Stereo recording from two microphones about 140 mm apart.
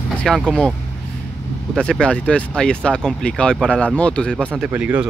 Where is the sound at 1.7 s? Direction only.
5° left (ahead or behind).